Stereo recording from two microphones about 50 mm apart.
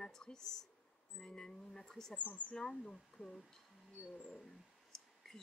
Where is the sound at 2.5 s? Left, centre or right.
Centre.